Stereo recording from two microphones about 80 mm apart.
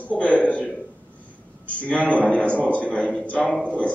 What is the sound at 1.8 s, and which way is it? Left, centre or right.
A man's voice, centre.